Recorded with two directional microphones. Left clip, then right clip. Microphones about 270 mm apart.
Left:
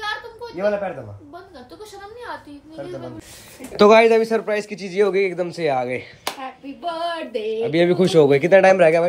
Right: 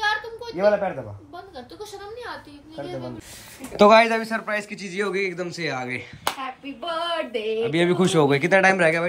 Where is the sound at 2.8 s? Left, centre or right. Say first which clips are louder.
Even; right.